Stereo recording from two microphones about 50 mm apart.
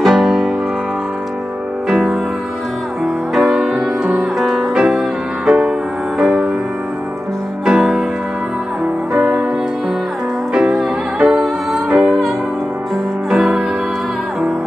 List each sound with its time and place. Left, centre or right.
0.0 s music: centre
3.3 s music: centre
7.6 s music: centre
9.1 s music: right
10.5 s music: centre
13.4 s music: right